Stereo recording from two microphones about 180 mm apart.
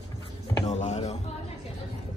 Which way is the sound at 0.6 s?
40° left (ahead or behind).